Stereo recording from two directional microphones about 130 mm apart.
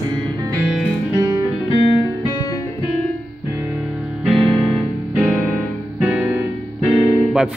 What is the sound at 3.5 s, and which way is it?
Music, 20° right (ahead or behind).